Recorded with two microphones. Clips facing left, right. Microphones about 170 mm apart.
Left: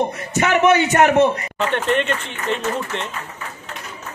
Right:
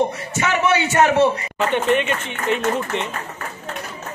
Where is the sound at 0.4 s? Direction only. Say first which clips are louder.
Left 4 dB; 50° left (ahead or behind).